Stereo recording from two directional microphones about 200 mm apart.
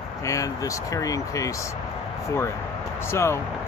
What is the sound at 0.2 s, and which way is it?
Speech, 15° left (ahead or behind).